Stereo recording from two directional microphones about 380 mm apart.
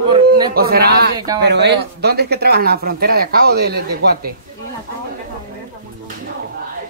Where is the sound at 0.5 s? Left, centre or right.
Right.